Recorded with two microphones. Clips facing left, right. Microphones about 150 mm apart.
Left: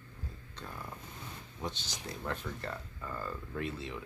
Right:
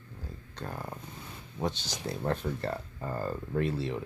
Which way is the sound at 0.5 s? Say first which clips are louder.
Right 7 dB; 50° right (ahead or behind).